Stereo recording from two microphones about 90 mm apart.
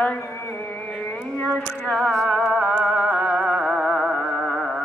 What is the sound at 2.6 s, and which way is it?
Music, 10° left (ahead or behind).